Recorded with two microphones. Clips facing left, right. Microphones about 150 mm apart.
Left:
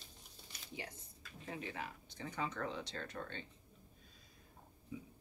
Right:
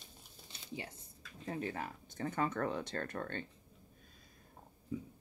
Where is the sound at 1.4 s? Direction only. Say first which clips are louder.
Right 5 dB; 40° right (ahead or behind).